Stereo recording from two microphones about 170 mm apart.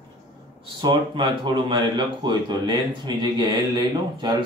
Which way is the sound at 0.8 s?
30° right (ahead or behind).